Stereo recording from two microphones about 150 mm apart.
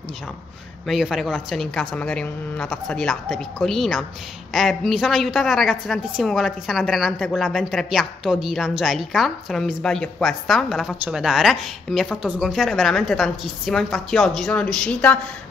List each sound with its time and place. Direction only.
0.8 s a woman's voice: centre (ahead or behind)